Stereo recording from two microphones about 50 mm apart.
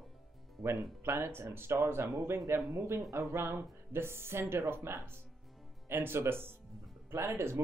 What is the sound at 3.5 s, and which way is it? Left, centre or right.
Speech, right.